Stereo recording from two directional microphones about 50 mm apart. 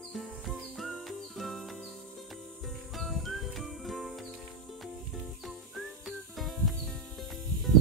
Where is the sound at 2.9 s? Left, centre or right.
Centre.